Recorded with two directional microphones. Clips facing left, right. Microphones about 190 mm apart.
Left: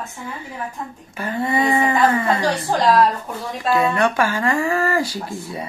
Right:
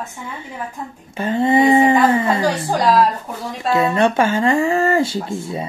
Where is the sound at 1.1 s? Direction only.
25° right (ahead or behind).